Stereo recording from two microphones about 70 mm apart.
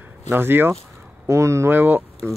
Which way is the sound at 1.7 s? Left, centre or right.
Right.